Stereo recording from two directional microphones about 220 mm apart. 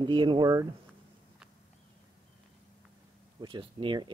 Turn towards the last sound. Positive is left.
turn(degrees=-20)  # may be behind; listen again after turning